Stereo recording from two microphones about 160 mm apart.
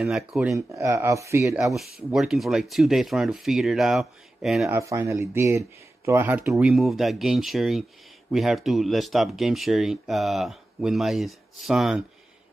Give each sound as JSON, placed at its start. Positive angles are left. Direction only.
{"t": 0.0, "sound": "speech", "side_deg": 0}
{"t": 0.6, "sound": "speech", "side_deg": -20}
{"t": 1.5, "sound": "speech", "side_deg": 0}
{"t": 4.6, "sound": "speech", "side_deg": -20}
{"t": 6.5, "sound": "speech", "side_deg": 0}